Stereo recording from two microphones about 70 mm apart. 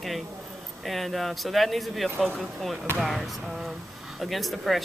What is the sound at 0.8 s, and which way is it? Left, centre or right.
Speech, centre.